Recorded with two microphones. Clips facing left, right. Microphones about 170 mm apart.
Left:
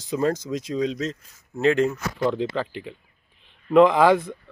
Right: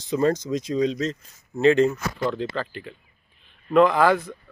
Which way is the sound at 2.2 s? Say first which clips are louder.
Left 5 dB; 15° left (ahead or behind).